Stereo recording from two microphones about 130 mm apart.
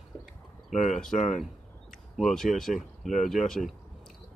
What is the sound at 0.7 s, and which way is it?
Speech, 65° left (ahead or behind).